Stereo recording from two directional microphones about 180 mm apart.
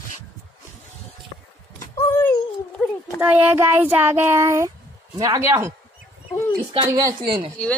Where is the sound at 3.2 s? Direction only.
10° right (ahead or behind).